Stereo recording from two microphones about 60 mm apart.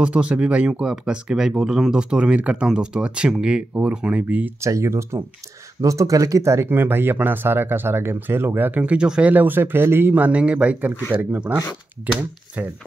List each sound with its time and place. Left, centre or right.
0.0 s speech: centre
4.6 s speech: right
5.8 s speech: right
6.8 s speech: right
8.8 s speech: centre
9.3 s speech: right